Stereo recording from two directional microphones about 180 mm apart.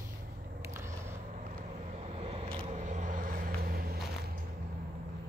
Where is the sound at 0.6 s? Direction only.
15° right (ahead or behind).